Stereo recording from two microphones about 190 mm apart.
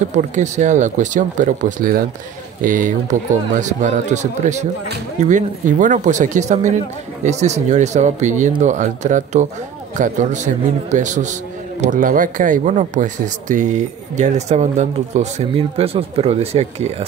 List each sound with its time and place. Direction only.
0.1 s speech: 40° right (ahead or behind)